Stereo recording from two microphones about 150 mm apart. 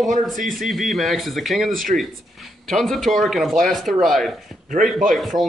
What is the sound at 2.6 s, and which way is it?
Speech, centre (ahead or behind).